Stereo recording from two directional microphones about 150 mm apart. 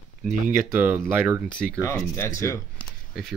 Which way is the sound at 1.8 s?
20° left (ahead or behind).